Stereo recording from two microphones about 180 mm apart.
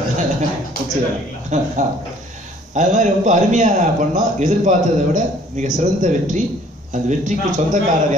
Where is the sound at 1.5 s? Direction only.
40° right (ahead or behind).